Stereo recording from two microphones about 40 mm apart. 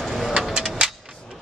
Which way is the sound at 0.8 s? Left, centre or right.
Right.